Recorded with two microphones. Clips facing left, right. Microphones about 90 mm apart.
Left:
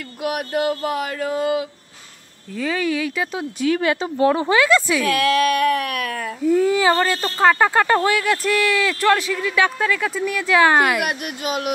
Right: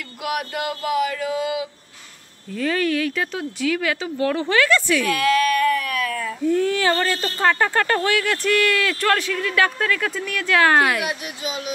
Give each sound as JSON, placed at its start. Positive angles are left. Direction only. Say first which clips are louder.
{"t": 0.2, "sound": "child singing", "louder": "left 4 dB", "side_deg": 40}
{"t": 2.5, "sound": "speech", "louder": "right 1 dB", "side_deg": 5}
{"t": 3.3, "sound": "a woman's voice", "louder": "left 3 dB", "side_deg": 20}
{"t": 3.7, "sound": "a woman's voice", "louder": "left 3 dB", "side_deg": 30}
{"t": 5.1, "sound": "speech", "louder": "left 2 dB", "side_deg": 75}
{"t": 6.4, "sound": "a woman's voice", "louder": "left 3 dB", "side_deg": 5}
{"t": 7.4, "sound": "speech", "louder": "left 4 dB", "side_deg": 15}
{"t": 11.1, "sound": "speech", "louder": "left 3 dB", "side_deg": 55}